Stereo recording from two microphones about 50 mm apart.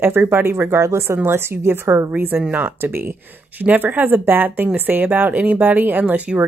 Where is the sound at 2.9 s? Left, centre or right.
Right.